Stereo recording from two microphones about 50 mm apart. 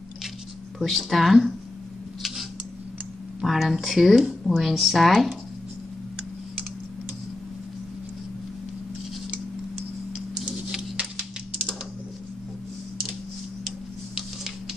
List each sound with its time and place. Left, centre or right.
0.7 s speech: centre
3.4 s speech: centre
10.4 s music: centre
13.7 s tick-tock: centre